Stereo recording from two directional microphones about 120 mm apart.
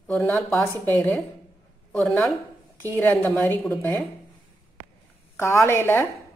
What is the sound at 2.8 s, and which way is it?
Speech, 15° left (ahead or behind).